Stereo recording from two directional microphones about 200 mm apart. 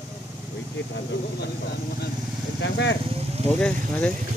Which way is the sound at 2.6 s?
60° left (ahead or behind).